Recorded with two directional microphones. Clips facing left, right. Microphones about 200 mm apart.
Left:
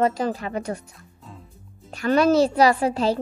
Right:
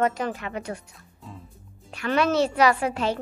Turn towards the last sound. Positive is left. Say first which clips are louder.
# left 3 dB
turn(degrees=35)  # may be behind; listen again after turning